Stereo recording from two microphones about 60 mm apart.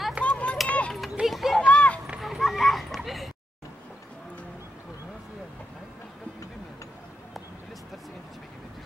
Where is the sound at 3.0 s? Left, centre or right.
Centre.